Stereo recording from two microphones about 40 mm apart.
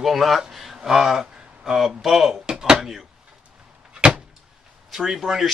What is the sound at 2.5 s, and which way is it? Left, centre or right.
Speech, centre.